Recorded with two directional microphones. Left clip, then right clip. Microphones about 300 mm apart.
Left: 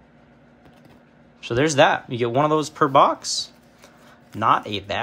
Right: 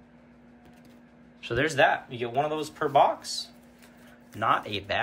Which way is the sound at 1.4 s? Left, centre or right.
Centre.